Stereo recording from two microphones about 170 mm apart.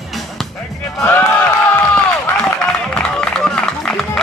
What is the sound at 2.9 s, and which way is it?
Music, 5° left (ahead or behind).